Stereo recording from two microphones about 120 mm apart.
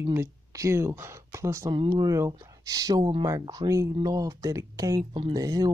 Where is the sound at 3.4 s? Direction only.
35° right (ahead or behind).